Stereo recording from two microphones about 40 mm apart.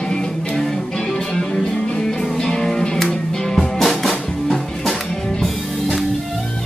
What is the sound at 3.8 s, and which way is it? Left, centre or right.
Music, centre.